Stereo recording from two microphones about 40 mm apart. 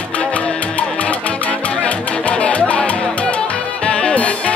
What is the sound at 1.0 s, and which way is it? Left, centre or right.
Music, left.